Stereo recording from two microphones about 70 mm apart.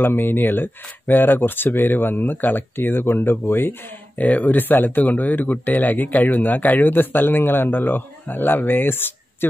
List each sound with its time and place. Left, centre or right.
0.0 s speech: left
4.2 s speech: left